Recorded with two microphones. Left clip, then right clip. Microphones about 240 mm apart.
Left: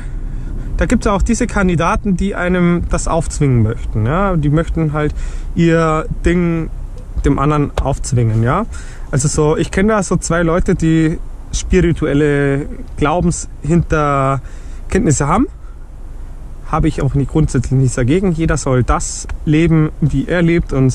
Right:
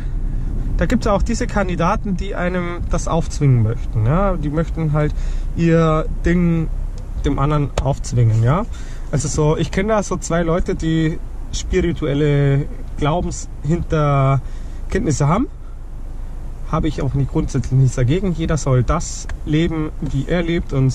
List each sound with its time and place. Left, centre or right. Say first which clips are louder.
0.7 s speech: left 3 dB; left
7.2 s speech: left 5 dB; left
16.7 s speech: left 5 dB; left